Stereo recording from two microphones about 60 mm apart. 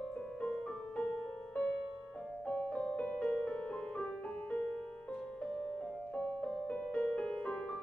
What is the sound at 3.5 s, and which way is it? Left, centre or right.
Music, left.